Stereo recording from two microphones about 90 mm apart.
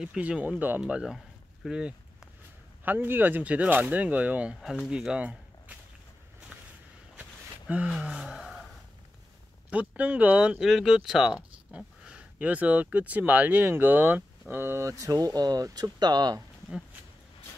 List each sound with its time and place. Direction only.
0.0 s speech: 10° right (ahead or behind)
0.8 s speech: 5° right (ahead or behind)
2.8 s speech: 20° right (ahead or behind)
6.5 s walk: 15° right (ahead or behind)
7.2 s a sound: 15° right (ahead or behind)
9.7 s speech: 15° right (ahead or behind); by 16.3 s 50° right (ahead or behind)